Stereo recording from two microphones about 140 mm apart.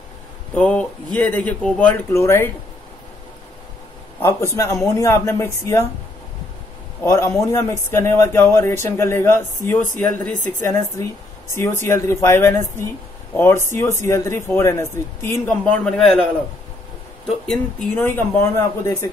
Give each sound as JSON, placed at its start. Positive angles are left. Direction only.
{"t": 0.6, "sound": "a man's voice", "side_deg": 10}
{"t": 4.2, "sound": "a man's voice", "side_deg": 20}
{"t": 7.0, "sound": "a man's voice", "side_deg": 20}
{"t": 15.6, "sound": "a man's voice", "side_deg": 5}
{"t": 17.9, "sound": "a man's voice", "side_deg": 15}